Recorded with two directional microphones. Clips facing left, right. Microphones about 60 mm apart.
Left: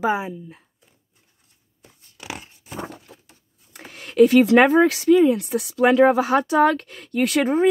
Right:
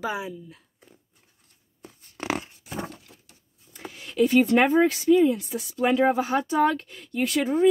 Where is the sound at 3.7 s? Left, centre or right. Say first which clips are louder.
Left 8 dB; left.